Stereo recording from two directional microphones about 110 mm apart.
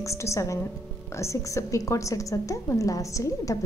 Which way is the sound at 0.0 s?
25° left (ahead or behind).